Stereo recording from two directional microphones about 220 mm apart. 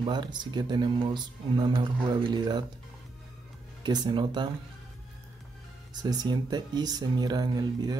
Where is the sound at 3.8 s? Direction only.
20° right (ahead or behind).